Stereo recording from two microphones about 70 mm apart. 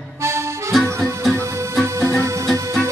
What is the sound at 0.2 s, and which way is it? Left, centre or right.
Music, right.